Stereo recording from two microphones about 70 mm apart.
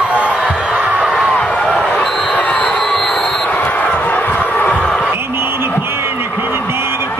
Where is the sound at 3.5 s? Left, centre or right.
Left.